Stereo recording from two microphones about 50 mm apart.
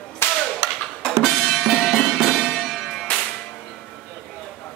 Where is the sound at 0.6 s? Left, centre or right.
Right.